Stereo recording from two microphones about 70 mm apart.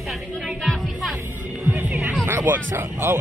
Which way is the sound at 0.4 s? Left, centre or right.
Centre.